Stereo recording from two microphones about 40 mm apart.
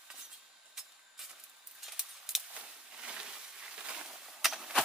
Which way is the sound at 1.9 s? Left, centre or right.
Centre.